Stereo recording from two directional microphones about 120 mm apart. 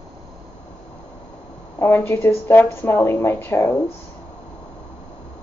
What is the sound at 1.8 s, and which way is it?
Speech, 20° left (ahead or behind).